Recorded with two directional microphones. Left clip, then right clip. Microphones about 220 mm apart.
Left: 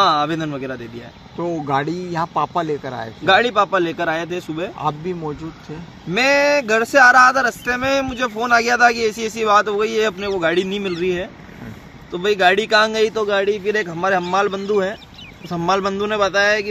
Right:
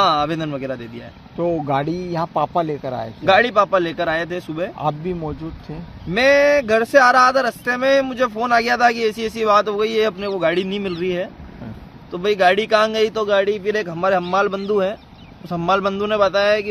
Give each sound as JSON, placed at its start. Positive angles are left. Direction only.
{"t": 0.0, "sound": "speech", "side_deg": -30}
{"t": 1.4, "sound": "speech", "side_deg": -50}
{"t": 3.3, "sound": "speech", "side_deg": -25}
{"t": 4.7, "sound": "speech", "side_deg": -45}
{"t": 6.1, "sound": "speech", "side_deg": -25}
{"t": 12.4, "sound": "speech", "side_deg": -30}